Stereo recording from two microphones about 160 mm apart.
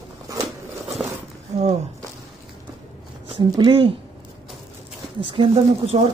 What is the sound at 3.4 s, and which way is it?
Speech, 30° right (ahead or behind).